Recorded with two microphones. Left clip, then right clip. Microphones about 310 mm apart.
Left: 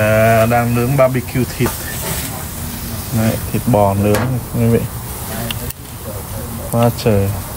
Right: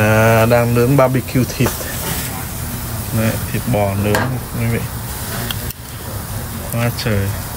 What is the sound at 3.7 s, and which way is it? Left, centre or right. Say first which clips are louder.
Speech: left 5 dB; centre.